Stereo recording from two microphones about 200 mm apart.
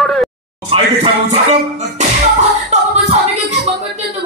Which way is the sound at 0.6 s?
30° right (ahead or behind).